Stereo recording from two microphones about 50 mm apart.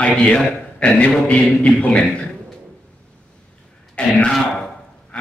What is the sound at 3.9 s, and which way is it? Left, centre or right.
Speech, left.